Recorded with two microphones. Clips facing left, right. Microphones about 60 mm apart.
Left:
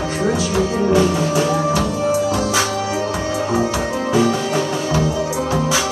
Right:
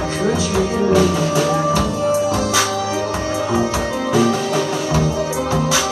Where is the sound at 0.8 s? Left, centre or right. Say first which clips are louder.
Right 1 dB; left.